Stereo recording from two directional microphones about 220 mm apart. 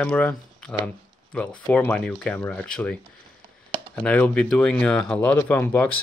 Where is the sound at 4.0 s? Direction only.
5° left (ahead or behind).